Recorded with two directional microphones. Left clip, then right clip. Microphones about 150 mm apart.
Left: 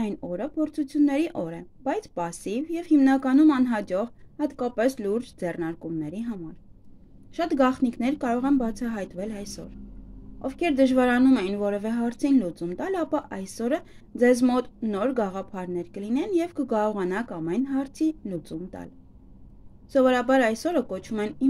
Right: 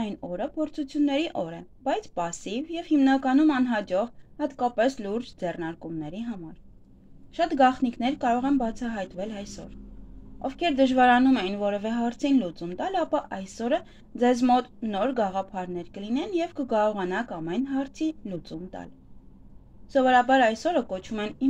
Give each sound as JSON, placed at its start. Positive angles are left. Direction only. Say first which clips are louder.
{"t": 0.3, "sound": "a woman's voice", "louder": "even", "side_deg": 45}
{"t": 19.9, "sound": "a woman's voice", "louder": "right 1 dB", "side_deg": 55}